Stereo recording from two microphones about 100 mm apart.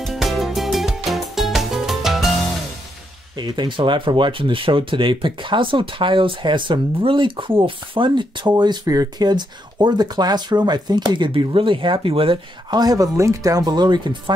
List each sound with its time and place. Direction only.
0.0 s music: centre (ahead or behind)
3.3 s speech: 50° right (ahead or behind); by 12.4 s 65° right (ahead or behind)
12.7 s speech: 40° right (ahead or behind)